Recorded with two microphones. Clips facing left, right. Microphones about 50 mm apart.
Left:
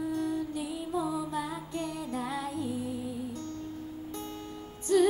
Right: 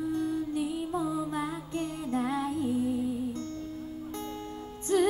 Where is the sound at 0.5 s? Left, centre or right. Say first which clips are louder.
Right 2 dB; right.